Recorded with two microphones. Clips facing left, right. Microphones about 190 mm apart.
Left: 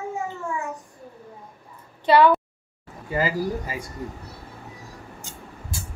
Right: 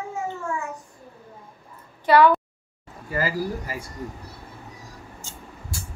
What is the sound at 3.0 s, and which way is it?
Speech, 20° left (ahead or behind).